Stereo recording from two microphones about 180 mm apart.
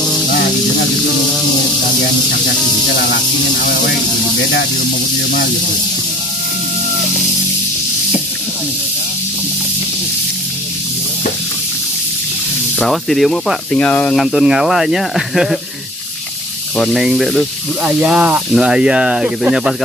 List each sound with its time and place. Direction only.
0.3 s snake: 65° left (ahead or behind)
1.3 s snake: centre (ahead or behind)
4.4 s snake: 70° left (ahead or behind)
12.7 s speech: centre (ahead or behind)
16.7 s speech: centre (ahead or behind)